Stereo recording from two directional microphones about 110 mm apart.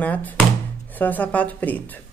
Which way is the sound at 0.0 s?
15° left (ahead or behind).